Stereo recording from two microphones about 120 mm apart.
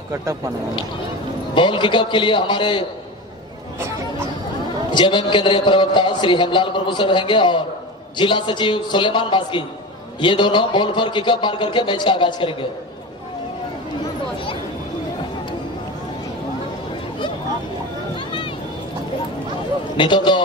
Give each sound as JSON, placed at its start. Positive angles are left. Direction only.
{"t": 0.1, "sound": "speech", "side_deg": -25}
{"t": 1.5, "sound": "a man's voice", "side_deg": 40}
{"t": 4.9, "sound": "a man's voice", "side_deg": 40}
{"t": 18.1, "sound": "a sound", "side_deg": 45}
{"t": 20.0, "sound": "a man's voice", "side_deg": 40}